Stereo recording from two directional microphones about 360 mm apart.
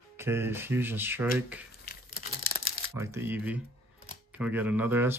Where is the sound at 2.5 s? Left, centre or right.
Left.